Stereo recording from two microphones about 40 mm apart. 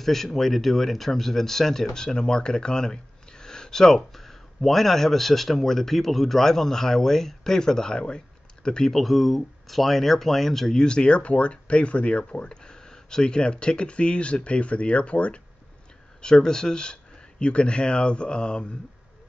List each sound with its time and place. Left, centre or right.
0.0 s speech: centre
8.9 s speech: centre
10.8 s speech: left
16.2 s speech: centre